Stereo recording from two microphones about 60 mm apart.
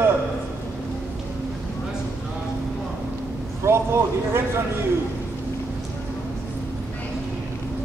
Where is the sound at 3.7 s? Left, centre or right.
Right.